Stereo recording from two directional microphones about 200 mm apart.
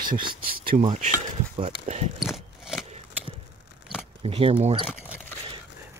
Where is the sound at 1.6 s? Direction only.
35° right (ahead or behind).